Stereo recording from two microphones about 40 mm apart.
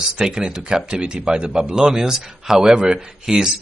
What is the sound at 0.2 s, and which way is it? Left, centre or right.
Speech, centre.